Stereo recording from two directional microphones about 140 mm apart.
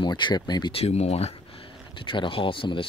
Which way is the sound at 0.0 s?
35° left (ahead or behind).